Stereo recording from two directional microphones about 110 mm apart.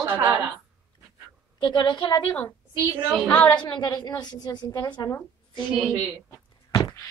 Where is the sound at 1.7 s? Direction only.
45° left (ahead or behind).